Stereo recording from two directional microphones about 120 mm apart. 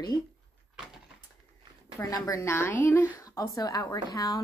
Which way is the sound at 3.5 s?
30° left (ahead or behind).